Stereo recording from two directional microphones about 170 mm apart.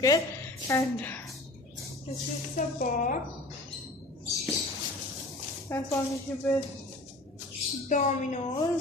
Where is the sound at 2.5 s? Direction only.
50° left (ahead or behind).